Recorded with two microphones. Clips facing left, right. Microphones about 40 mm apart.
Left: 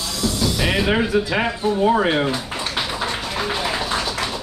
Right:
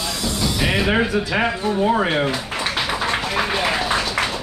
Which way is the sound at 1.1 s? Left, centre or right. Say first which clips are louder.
Left 2 dB; centre.